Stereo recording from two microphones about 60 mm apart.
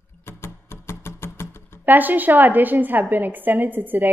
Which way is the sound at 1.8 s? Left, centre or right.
Right.